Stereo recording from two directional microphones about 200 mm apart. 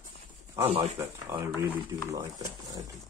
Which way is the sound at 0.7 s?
30° right (ahead or behind).